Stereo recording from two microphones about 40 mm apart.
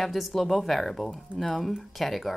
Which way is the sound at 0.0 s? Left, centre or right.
Centre.